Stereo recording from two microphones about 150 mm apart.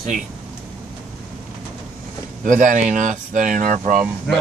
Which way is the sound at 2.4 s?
60° right (ahead or behind).